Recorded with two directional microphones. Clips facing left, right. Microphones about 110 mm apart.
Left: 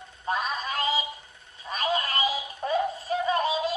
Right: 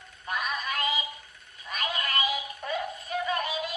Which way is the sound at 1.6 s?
30° left (ahead or behind).